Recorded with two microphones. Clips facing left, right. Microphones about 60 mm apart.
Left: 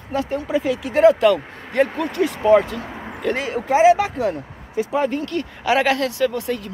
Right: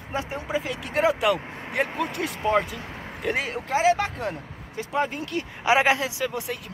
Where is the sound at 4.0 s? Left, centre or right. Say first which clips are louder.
Left 7 dB; centre.